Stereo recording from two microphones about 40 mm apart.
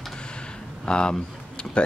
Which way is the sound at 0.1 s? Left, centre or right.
Left.